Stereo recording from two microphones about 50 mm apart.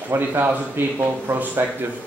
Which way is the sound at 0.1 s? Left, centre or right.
Right.